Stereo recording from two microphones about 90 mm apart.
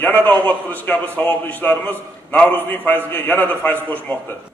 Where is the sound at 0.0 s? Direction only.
20° left (ahead or behind).